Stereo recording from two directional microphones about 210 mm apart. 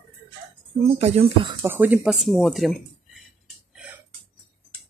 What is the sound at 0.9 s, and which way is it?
Speech, 30° right (ahead or behind).